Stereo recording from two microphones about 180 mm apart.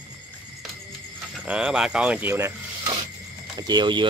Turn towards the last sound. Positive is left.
turn(degrees=-25)  # may be behind; listen again after turning